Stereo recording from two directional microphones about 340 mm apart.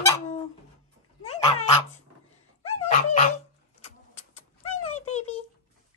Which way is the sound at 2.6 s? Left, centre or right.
Centre.